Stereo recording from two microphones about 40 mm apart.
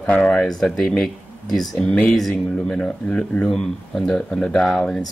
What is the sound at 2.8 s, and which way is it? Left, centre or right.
Speech, left.